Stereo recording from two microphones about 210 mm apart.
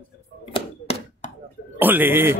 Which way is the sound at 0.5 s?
30° left (ahead or behind).